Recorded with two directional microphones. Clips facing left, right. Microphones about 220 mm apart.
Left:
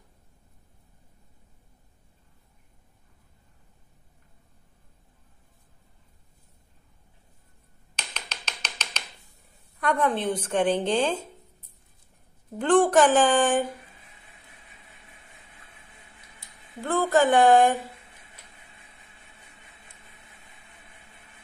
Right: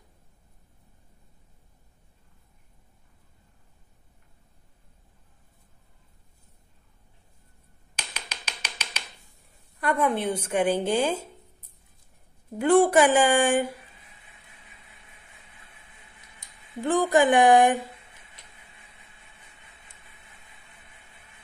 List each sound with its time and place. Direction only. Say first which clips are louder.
7.9 s finger snapping: even; 10° right (ahead or behind)
9.8 s a woman's voice: even; 5° right (ahead or behind)
12.5 s a woman's voice: right 1 dB; 10° right (ahead or behind)
16.3 s speech: right 4 dB; 15° right (ahead or behind)